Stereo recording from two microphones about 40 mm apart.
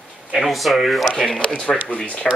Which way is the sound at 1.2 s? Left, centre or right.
Left.